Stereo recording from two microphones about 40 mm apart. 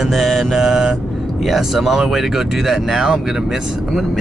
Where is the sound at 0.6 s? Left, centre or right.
Centre.